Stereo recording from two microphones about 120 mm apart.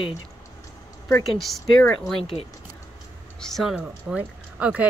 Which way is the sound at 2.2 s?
55° left (ahead or behind).